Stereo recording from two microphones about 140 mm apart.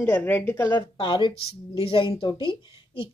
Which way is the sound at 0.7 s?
35° left (ahead or behind).